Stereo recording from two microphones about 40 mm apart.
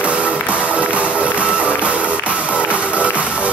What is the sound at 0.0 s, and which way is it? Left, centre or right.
Music, right.